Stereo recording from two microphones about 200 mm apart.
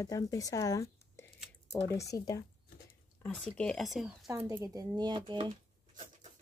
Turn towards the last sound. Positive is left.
turn(degrees=-25)  # may be behind; listen again after turning